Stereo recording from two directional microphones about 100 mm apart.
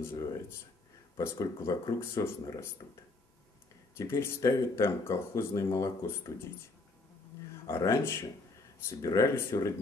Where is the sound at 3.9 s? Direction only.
25° left (ahead or behind).